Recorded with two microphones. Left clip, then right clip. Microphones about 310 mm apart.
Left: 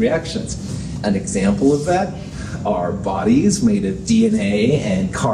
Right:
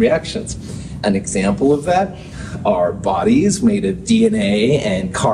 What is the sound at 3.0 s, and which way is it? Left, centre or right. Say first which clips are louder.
Speech: right 2 dB; right.